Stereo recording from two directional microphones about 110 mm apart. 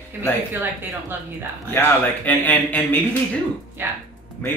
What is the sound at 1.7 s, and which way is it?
Speech, 15° left (ahead or behind).